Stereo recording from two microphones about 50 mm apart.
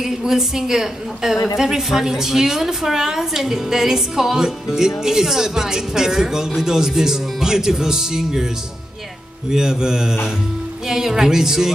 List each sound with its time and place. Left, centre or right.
0.0 s a woman's voice: centre
9.5 s a woman's voice: centre